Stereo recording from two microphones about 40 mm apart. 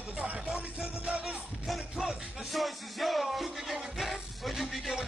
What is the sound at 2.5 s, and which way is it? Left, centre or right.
Music, centre.